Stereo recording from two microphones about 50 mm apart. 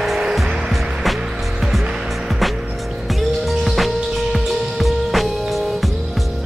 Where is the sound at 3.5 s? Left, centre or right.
Centre.